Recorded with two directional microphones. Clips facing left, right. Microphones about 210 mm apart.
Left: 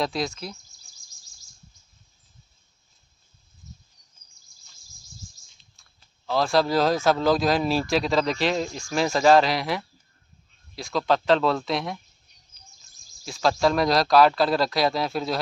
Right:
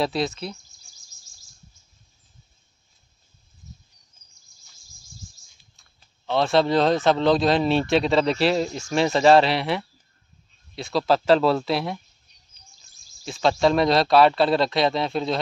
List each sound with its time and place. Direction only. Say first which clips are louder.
0.0 s speech: right 3 dB; centre (ahead or behind)
6.5 s speech: right 2 dB; centre (ahead or behind)
8.3 s speech: right 4 dB; 35° right (ahead or behind)
8.5 s speech: right 3 dB; centre (ahead or behind)
13.2 s speech: right 2 dB; centre (ahead or behind)